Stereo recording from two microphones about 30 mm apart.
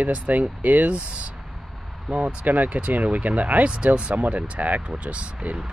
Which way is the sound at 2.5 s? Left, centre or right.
Right.